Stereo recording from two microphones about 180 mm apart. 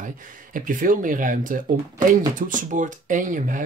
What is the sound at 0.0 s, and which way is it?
Speech, 50° right (ahead or behind).